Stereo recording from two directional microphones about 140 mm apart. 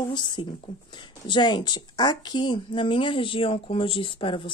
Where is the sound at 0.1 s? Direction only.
35° left (ahead or behind).